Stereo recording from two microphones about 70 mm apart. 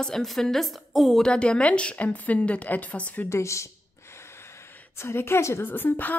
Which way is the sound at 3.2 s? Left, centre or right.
Left.